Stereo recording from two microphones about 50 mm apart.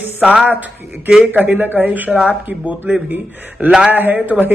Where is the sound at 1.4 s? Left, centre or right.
Right.